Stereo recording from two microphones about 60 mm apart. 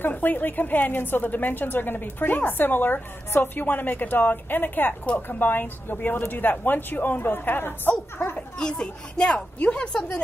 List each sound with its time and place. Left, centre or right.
0.0 s a woman's voice: left
8.4 s speech: centre